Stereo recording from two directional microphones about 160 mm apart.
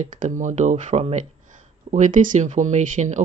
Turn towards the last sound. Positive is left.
turn(degrees=-50)  # may be behind; listen again after turning